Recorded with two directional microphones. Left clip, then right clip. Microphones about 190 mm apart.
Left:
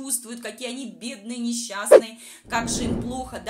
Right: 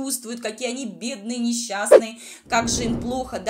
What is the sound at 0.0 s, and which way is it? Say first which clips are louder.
Speech: right 5 dB; 15° right (ahead or behind).